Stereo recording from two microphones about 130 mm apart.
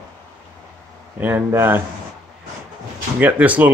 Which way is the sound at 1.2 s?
20° right (ahead or behind).